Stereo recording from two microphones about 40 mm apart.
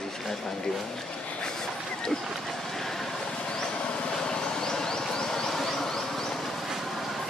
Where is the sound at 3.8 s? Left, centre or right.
Left.